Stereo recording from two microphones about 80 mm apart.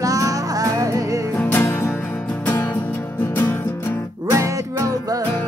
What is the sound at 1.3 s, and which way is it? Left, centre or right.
Music, left.